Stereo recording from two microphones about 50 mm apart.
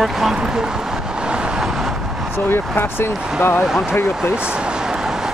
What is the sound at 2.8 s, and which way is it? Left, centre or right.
Speech, left.